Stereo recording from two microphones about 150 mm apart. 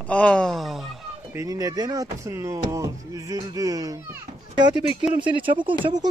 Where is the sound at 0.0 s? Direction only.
10° left (ahead or behind).